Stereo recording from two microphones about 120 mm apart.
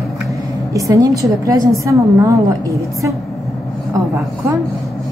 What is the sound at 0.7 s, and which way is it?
A woman's voice, 30° right (ahead or behind).